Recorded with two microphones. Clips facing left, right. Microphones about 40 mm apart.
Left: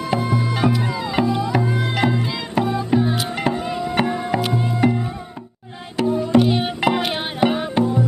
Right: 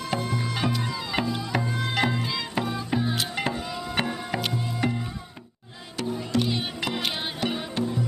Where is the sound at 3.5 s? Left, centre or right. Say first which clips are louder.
Left 8 dB; left.